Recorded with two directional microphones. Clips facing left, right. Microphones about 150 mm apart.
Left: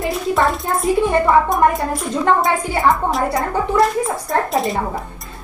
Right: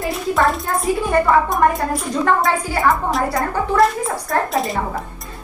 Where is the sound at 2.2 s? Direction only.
20° left (ahead or behind).